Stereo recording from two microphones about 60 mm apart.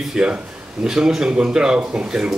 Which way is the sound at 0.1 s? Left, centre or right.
Centre.